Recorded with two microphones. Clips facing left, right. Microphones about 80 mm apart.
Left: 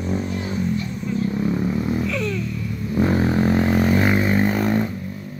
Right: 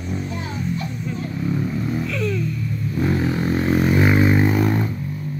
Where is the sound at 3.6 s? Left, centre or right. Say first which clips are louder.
Even; centre.